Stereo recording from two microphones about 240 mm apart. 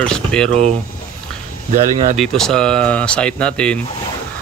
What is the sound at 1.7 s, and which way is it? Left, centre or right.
Speech, right.